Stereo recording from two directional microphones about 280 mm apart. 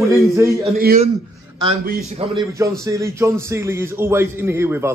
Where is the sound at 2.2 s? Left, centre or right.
Centre.